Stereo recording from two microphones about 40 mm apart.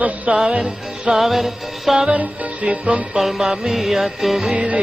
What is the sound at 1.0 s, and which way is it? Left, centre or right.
Music, centre.